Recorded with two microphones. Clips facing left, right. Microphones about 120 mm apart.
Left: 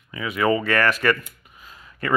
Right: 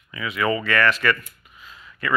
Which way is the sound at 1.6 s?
45° left (ahead or behind).